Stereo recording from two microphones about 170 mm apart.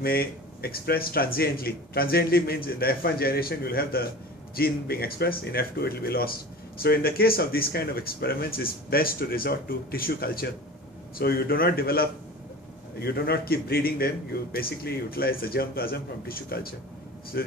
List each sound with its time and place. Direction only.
0.0 s speech: 65° left (ahead or behind)